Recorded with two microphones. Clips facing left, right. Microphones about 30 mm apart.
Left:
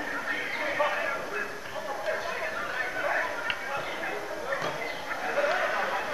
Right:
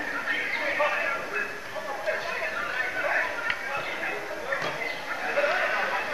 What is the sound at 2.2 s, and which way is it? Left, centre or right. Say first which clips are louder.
Chatter: right 2 dB; right.